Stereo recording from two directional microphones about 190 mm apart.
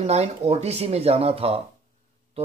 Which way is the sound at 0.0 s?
35° right (ahead or behind).